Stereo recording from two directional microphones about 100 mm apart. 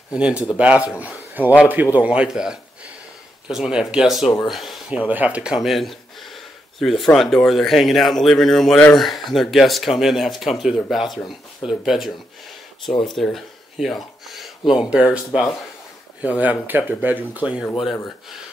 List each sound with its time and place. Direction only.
0.1 s speech: 10° right (ahead or behind)
4.5 s a sound: centre (ahead or behind)
4.9 s speech: 15° right (ahead or behind)